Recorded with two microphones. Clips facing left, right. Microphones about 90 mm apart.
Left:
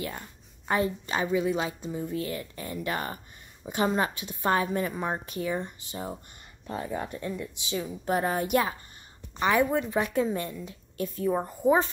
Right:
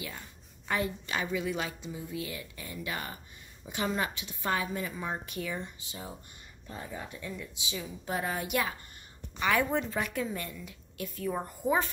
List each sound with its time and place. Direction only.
0.7 s a woman's voice: 35° left (ahead or behind)
1.8 s a woman's voice: 45° left (ahead or behind)
5.6 s a woman's voice: 45° left (ahead or behind)
6.7 s a woman's voice: 60° left (ahead or behind); by 8.7 s 40° left (ahead or behind)
9.4 s a woman's voice: 25° left (ahead or behind)